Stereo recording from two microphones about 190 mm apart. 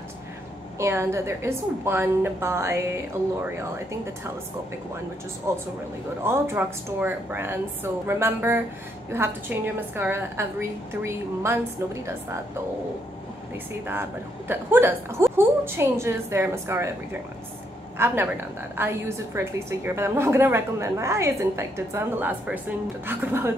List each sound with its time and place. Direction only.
0.7 s a woman's voice: 15° right (ahead or behind)
5.5 s a woman's voice: 15° right (ahead or behind)
14.5 s a woman's voice: 10° right (ahead or behind)